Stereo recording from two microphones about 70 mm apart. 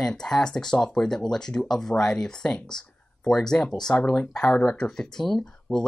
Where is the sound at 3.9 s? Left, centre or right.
Left.